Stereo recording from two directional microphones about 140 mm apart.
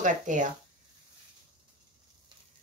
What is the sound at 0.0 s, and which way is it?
Speech, 65° right (ahead or behind).